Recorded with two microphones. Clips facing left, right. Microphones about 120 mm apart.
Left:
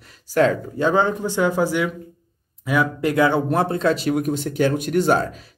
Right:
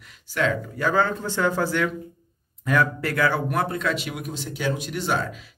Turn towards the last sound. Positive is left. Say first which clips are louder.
# left 8 dB
turn(degrees=40)  # may be behind; listen again after turning